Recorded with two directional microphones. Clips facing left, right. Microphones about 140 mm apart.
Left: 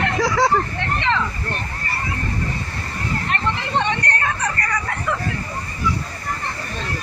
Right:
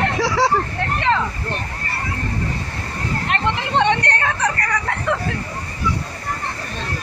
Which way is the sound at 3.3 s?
75° right (ahead or behind).